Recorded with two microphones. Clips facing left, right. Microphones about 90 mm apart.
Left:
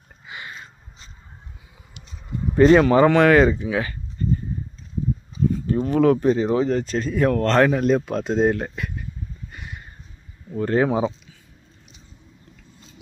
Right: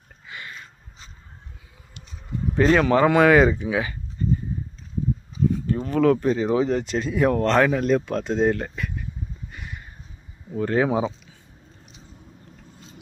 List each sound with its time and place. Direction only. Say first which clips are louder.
0.3 s a sound: left 2 dB; 20° left (ahead or behind)
2.5 s speech: left 4 dB; 5° left (ahead or behind)
3.1 s speech: left 1 dB; 10° right (ahead or behind)
5.7 s a sound: left 4 dB; 5° left (ahead or behind)
5.9 s speech: left 2 dB; 10° left (ahead or behind)
6.6 s speech: left 1 dB; 15° right (ahead or behind)
7.6 s speech: left 2 dB; 5° left (ahead or behind)
9.5 s a sound: even; centre (ahead or behind)
10.5 s speech: left 1 dB; centre (ahead or behind)